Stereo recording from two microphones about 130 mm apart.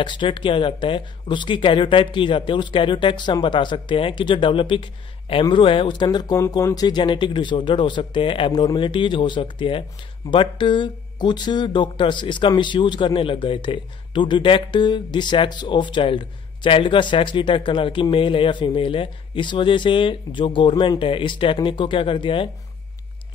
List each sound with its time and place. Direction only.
0.0 s speech: 40° left (ahead or behind)